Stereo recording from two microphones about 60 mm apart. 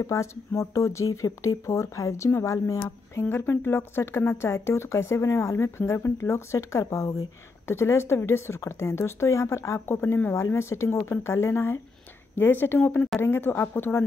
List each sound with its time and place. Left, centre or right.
0.0 s speech: left
3.2 s speech: left
10.3 s speech: left